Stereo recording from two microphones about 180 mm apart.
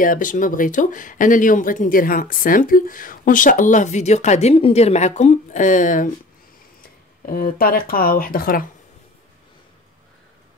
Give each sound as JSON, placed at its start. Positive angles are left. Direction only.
{"t": 0.0, "sound": "speech", "side_deg": 50}
{"t": 7.2, "sound": "speech", "side_deg": 55}